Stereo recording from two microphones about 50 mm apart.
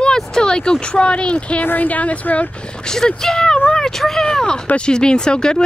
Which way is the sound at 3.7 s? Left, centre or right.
Centre.